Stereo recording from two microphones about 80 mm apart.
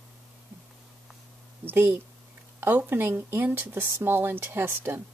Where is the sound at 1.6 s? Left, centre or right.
Right.